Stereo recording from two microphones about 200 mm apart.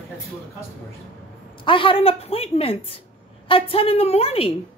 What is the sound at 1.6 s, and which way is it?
A woman's voice, 25° left (ahead or behind).